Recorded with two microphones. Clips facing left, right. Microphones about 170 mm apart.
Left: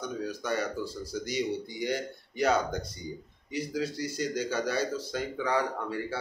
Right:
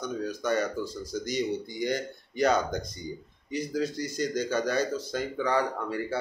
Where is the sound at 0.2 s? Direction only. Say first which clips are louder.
Right 4 dB; 10° left (ahead or behind).